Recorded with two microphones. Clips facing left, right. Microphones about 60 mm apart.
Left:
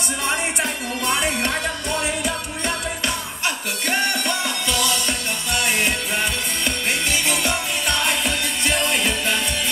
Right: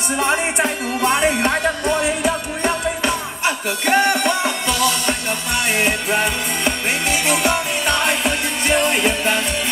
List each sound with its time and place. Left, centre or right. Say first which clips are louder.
0.2 s music: right 6 dB; right